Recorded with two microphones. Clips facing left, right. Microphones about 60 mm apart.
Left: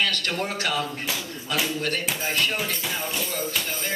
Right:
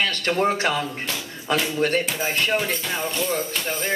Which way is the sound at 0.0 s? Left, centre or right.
Right.